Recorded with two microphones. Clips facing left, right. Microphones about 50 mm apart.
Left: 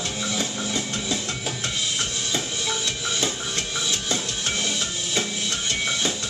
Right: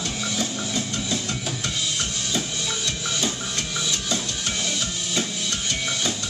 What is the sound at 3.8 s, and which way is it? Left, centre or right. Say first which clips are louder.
Music: even; left.